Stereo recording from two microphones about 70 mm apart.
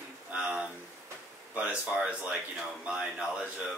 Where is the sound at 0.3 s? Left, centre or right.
Centre.